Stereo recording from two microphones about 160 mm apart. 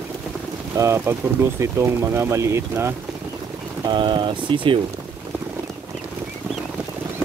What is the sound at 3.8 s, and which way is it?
Speech, 30° right (ahead or behind).